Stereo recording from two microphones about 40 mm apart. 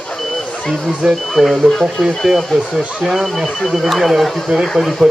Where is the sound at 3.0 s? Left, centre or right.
Centre.